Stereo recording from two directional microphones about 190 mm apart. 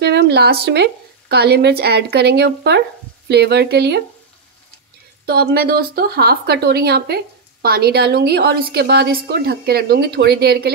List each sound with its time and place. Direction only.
0.0 s a woman's voice: 60° right (ahead or behind)
5.2 s a woman's voice: 55° right (ahead or behind)